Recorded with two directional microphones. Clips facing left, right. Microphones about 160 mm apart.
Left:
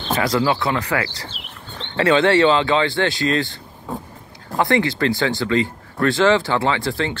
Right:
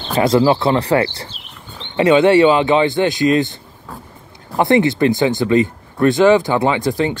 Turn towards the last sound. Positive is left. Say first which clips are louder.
# right 4 dB
turn(degrees=-15)  # may be behind; listen again after turning